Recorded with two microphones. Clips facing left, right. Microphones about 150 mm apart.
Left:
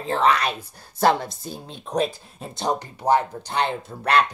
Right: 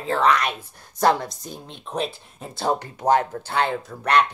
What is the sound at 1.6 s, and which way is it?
Speech, 40° left (ahead or behind).